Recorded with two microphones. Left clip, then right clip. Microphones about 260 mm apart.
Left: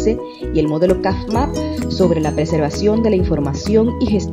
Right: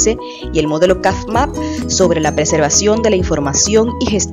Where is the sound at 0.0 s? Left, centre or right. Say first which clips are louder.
Right 2 dB; right.